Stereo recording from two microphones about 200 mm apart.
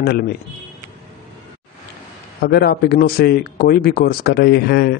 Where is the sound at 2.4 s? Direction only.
50° left (ahead or behind).